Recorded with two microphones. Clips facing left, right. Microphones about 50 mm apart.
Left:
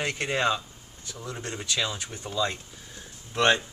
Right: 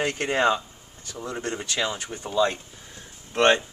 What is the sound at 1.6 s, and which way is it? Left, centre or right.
Speech, right.